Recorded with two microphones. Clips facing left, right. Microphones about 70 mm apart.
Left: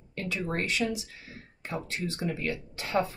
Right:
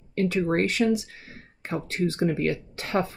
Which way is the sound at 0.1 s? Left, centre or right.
Right.